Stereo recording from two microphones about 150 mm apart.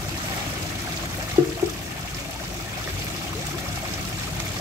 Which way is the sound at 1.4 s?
45° right (ahead or behind).